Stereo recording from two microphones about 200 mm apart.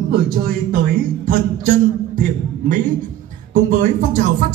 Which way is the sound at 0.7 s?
45° right (ahead or behind).